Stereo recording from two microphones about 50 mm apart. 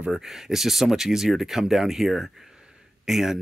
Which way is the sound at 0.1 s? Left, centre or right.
Centre.